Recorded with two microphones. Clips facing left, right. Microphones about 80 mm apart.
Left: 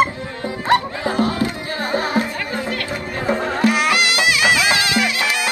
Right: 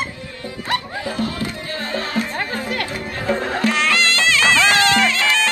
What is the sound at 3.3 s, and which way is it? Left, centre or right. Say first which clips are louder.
Music: left 2 dB; centre.